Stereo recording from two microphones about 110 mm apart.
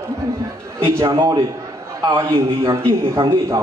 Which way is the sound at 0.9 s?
30° right (ahead or behind).